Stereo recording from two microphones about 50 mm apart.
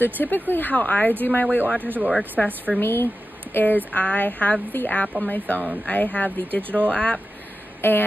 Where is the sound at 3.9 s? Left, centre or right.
Left.